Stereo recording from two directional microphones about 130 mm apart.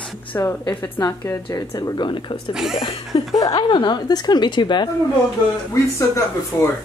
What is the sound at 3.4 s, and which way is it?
Speech, 30° left (ahead or behind).